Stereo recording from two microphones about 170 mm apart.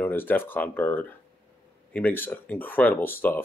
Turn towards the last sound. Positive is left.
turn(degrees=10)  # may be behind; listen again after turning